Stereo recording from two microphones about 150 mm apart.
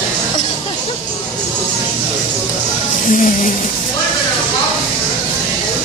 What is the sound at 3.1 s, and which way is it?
Music, 65° left (ahead or behind).